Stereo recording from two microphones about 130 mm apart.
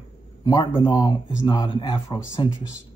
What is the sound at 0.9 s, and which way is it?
Speech, 30° left (ahead or behind).